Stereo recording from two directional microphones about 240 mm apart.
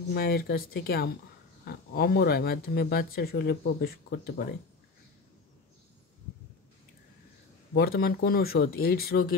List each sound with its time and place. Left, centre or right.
0.1 s speech: left
7.7 s speech: left